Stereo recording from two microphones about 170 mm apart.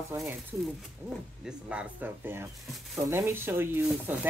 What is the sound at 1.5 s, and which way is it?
Speech, 5° right (ahead or behind).